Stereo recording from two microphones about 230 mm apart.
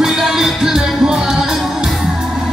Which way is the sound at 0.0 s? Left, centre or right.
Centre.